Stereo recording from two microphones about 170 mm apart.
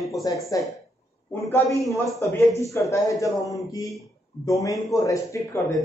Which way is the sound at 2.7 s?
20° left (ahead or behind).